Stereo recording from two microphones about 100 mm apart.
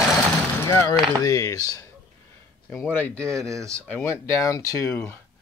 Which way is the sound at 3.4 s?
30° right (ahead or behind).